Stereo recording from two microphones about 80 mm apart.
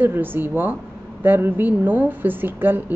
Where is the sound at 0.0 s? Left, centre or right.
Right.